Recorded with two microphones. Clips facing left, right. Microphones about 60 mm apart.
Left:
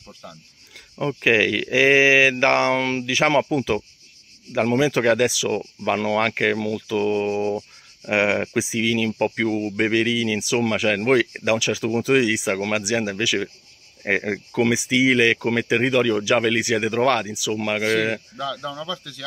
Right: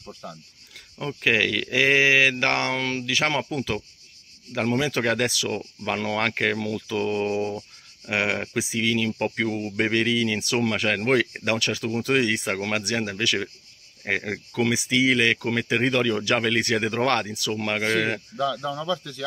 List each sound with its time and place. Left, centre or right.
0.0 s speech: centre
0.9 s speech: centre
18.4 s speech: centre